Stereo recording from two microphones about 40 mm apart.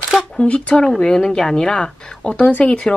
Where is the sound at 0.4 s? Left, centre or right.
Left.